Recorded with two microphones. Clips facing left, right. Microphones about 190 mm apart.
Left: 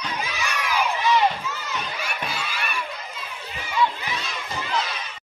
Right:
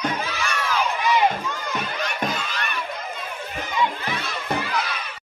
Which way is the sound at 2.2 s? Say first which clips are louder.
Right 2 dB; 10° left (ahead or behind).